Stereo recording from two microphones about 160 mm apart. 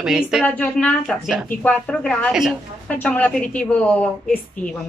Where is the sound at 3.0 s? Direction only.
10° left (ahead or behind).